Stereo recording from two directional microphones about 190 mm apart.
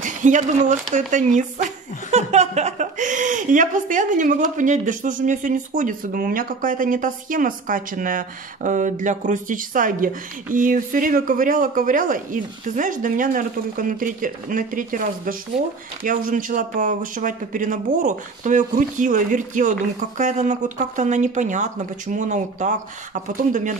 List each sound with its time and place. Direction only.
0.0 s a man's voice: 40° right (ahead or behind)